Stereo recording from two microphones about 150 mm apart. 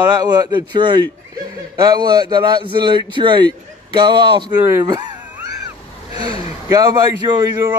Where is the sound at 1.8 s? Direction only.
30° right (ahead or behind).